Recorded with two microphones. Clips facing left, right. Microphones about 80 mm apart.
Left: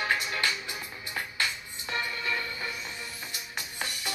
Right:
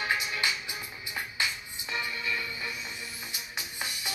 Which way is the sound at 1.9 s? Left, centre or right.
Left.